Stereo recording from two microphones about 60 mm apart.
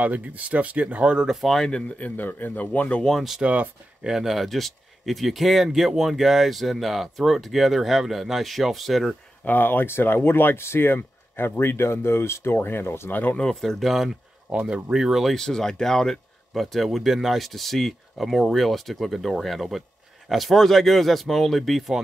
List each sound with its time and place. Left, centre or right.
0.0 s speech: right; by 1.5 s centre
1.5 s speech: centre
2.0 s speech: left
3.0 s speech: centre
3.3 s speech: centre
4.1 s speech: centre
9.4 s speech: left
13.1 s speech: left
13.4 s speech: centre
14.5 s speech: centre
15.3 s speech: centre